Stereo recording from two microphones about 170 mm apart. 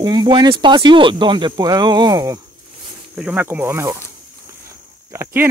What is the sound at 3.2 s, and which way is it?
Speech, 5° right (ahead or behind).